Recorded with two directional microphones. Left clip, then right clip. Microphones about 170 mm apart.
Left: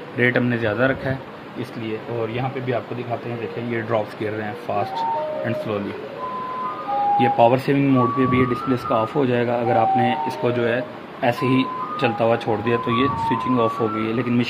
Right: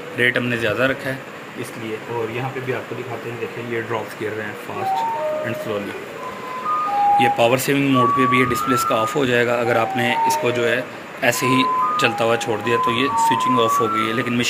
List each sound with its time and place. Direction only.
0.2 s speech: 50° left (ahead or behind)
7.2 s speech: 45° left (ahead or behind)
13.6 s speech: 40° left (ahead or behind)